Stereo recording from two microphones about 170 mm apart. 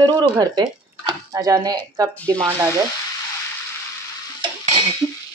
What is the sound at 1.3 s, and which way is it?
Speech, 20° right (ahead or behind).